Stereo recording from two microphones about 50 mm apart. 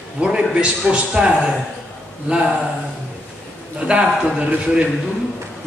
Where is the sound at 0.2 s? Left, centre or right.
Centre.